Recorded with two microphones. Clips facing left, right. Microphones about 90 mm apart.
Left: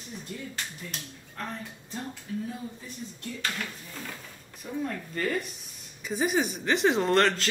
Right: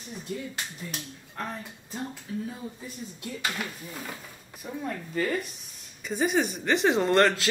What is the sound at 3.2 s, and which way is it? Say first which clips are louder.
Speech: right 2 dB; 10° right (ahead or behind).